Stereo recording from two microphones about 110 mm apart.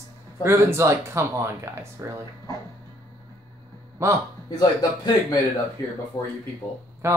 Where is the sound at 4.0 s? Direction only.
25° right (ahead or behind).